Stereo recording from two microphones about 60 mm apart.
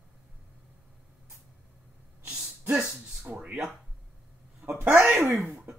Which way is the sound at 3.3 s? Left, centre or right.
Right.